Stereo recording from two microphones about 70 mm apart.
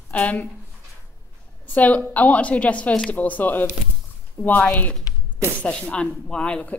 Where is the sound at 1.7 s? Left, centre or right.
Left.